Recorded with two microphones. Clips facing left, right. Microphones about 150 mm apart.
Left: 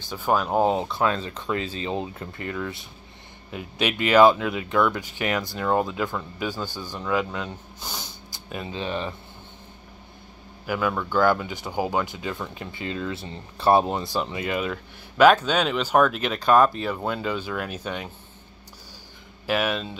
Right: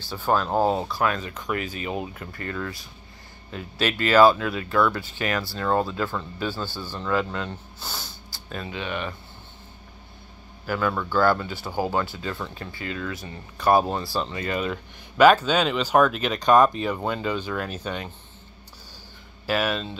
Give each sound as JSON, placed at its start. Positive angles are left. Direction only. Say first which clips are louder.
{"t": 0.0, "sound": "speech", "louder": "even", "side_deg": 10}
{"t": 2.4, "sound": "speech", "louder": "left 1 dB", "side_deg": 10}
{"t": 7.9, "sound": "snort", "louder": "even", "side_deg": 20}
{"t": 8.6, "sound": "speech", "louder": "left 2 dB", "side_deg": 30}
{"t": 10.7, "sound": "speech", "louder": "even", "side_deg": 10}
{"t": 14.7, "sound": "speech", "louder": "right 1 dB", "side_deg": -5}
{"t": 19.4, "sound": "speech", "louder": "even", "side_deg": 10}